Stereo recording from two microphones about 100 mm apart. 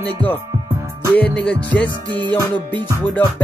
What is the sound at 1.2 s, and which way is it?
Music, 15° left (ahead or behind).